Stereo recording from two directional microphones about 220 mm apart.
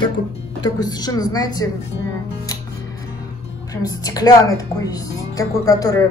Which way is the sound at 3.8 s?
15° left (ahead or behind).